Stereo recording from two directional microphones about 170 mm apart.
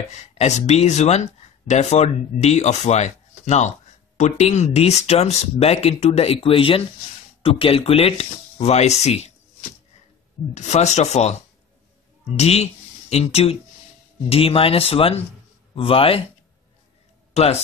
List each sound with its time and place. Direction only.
0.1 s speech: 40° left (ahead or behind)
10.5 s speech: 40° left (ahead or behind)
17.3 s a sound: 40° left (ahead or behind)